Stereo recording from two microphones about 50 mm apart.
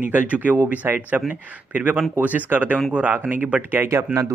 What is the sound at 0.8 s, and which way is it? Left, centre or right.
Speech, right.